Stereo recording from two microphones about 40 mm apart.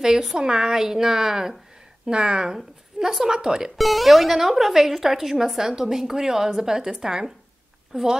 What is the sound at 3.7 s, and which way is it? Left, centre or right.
A woman's voice, centre.